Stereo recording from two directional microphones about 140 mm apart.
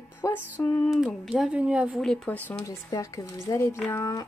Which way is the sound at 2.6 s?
25° left (ahead or behind).